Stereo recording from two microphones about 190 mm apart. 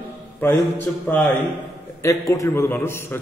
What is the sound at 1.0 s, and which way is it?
A man's voice, 10° left (ahead or behind).